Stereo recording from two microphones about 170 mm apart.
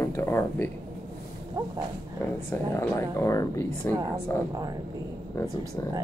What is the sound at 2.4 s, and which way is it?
Speech, 15° left (ahead or behind).